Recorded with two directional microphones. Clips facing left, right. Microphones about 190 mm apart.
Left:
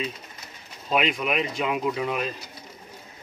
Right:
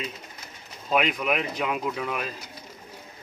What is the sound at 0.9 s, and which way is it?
Speech, centre (ahead or behind).